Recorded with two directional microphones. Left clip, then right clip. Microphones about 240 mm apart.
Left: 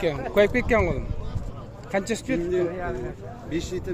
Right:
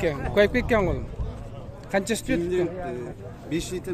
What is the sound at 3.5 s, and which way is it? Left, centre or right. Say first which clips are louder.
Speech: even; right.